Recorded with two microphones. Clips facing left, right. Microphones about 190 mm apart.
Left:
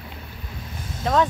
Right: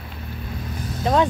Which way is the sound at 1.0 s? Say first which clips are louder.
Right 2 dB; 25° right (ahead or behind).